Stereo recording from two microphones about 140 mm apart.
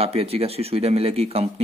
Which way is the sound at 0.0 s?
45° right (ahead or behind).